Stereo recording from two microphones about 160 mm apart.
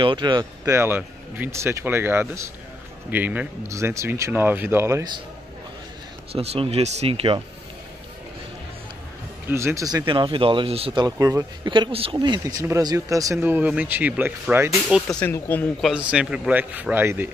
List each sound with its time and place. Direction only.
0.0 s speech: 30° right (ahead or behind)
0.7 s speech: 10° right (ahead or behind)
6.3 s speech: 40° right (ahead or behind)
9.5 s speech: 15° right (ahead or behind)
11.7 s speech: 30° right (ahead or behind); by 14.7 s 15° right (ahead or behind)
14.9 s speech: 5° left (ahead or behind)
15.2 s speech: 15° left (ahead or behind)
15.8 s speech: 5° right (ahead or behind)